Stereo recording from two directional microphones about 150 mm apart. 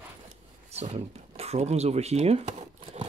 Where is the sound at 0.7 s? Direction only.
45° right (ahead or behind).